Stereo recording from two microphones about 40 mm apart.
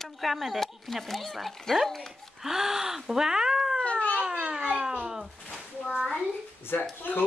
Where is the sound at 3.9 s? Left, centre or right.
Left.